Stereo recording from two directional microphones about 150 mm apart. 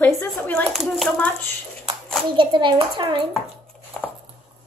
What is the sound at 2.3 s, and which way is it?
Speech, 35° right (ahead or behind).